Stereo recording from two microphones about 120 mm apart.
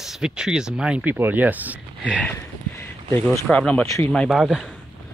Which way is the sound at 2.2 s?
15° left (ahead or behind).